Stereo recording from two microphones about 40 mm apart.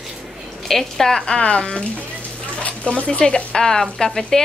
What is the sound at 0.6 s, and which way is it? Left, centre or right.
Speech, centre.